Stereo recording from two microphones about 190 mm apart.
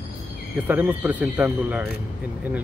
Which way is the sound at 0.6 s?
10° right (ahead or behind).